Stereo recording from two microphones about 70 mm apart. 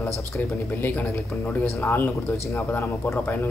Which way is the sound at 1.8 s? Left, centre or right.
Left.